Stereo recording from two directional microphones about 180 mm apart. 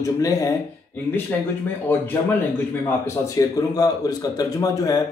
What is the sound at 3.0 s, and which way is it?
A man's voice, 20° left (ahead or behind).